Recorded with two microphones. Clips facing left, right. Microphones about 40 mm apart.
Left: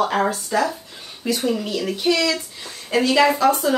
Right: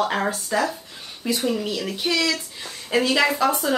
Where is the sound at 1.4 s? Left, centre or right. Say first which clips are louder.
Left 1 dB; centre.